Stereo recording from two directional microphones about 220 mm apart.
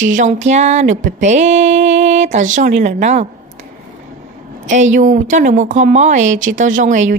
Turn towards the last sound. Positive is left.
turn(degrees=-35)  # may be behind; listen again after turning